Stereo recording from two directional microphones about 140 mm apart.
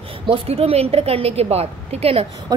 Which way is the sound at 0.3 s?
45° right (ahead or behind).